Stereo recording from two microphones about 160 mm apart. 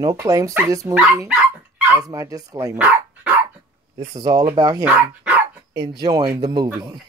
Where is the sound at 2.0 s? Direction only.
20° right (ahead or behind).